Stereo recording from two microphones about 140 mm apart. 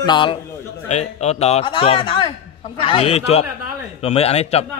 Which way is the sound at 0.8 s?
55° left (ahead or behind).